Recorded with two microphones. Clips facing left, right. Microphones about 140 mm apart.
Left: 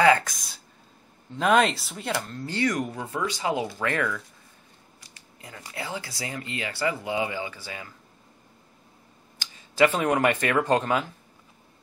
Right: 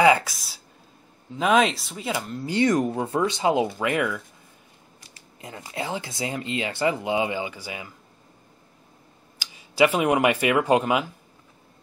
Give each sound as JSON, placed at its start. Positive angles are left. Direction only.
{"t": 0.0, "sound": "speech", "side_deg": -10}
{"t": 2.6, "sound": "speech", "side_deg": -25}
{"t": 3.7, "sound": "speech", "side_deg": -10}
{"t": 5.4, "sound": "speech", "side_deg": -25}
{"t": 9.4, "sound": "speech", "side_deg": -10}